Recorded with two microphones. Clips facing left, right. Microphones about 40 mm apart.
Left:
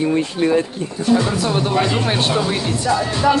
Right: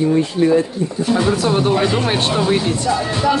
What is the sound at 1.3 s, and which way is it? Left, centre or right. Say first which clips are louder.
Speech: right 3 dB; centre.